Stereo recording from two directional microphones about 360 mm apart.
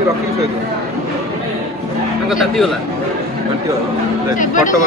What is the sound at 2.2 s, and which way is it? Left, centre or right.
Speech, centre.